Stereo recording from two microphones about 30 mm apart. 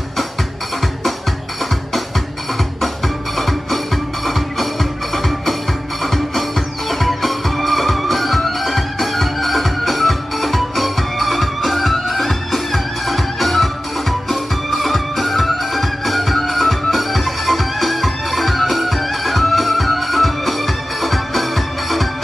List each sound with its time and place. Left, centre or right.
3.3 s music: centre
5.1 s music: centre